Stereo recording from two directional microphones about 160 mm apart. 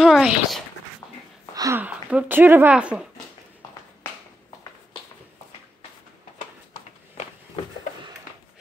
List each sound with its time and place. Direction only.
0.0 s a child's voice: centre (ahead or behind)
1.5 s a sound: 20° right (ahead or behind)
1.8 s speech: 10° right (ahead or behind)